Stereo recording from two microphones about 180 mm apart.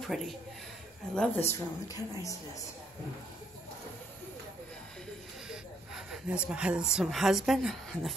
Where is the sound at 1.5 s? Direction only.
15° left (ahead or behind).